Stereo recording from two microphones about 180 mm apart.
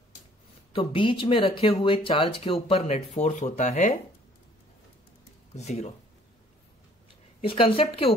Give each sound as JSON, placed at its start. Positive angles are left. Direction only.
{"t": 0.7, "sound": "speech", "side_deg": 30}
{"t": 5.6, "sound": "speech", "side_deg": 35}
{"t": 7.4, "sound": "speech", "side_deg": 30}